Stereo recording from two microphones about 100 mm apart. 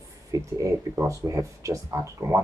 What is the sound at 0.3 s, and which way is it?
Speech, 30° right (ahead or behind).